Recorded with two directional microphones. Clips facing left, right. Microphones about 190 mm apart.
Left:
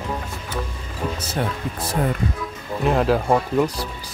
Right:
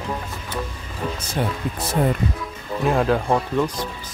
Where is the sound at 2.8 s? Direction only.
Centre (ahead or behind).